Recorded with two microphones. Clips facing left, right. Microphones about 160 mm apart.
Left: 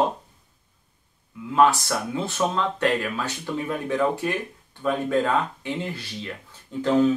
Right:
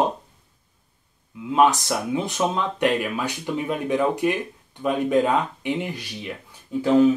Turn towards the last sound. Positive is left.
turn(degrees=-10)  # may be behind; listen again after turning